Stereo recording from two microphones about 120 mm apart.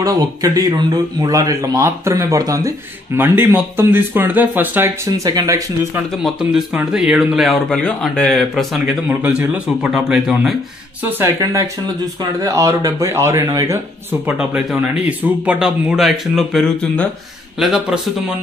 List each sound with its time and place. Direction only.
0.0 s speech: 30° right (ahead or behind)
3.2 s speech: 20° right (ahead or behind)
6.2 s speech: 5° right (ahead or behind)
11.1 s speech: 20° right (ahead or behind)
14.2 s speech: 10° right (ahead or behind)